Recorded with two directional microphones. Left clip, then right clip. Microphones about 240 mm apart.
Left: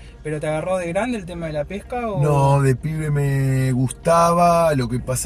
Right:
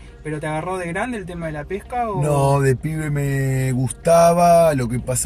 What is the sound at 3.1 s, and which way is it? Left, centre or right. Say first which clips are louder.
Speech: left 1 dB; centre.